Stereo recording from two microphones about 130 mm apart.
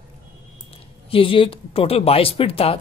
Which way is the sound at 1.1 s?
45° left (ahead or behind).